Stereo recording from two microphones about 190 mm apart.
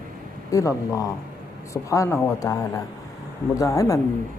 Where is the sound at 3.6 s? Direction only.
15° left (ahead or behind).